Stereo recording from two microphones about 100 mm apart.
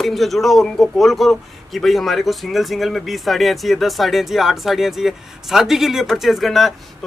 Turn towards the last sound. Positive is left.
turn(degrees=0)  # may be behind; listen again after turning